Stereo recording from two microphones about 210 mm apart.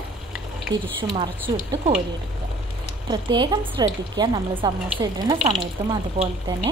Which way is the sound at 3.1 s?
20° right (ahead or behind).